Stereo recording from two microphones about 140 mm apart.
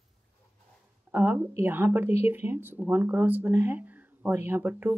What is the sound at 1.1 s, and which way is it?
Speech, 15° right (ahead or behind).